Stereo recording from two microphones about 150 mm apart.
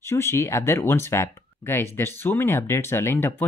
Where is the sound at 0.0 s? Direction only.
20° left (ahead or behind).